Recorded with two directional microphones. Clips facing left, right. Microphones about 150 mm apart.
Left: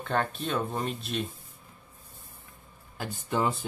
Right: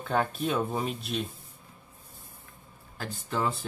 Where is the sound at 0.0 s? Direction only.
5° right (ahead or behind).